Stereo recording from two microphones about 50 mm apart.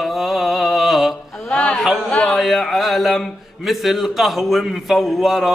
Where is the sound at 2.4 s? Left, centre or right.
Centre.